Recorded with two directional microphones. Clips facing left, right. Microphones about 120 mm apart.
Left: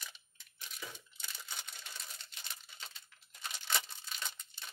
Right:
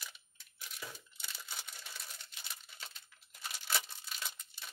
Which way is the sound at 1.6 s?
5° right (ahead or behind).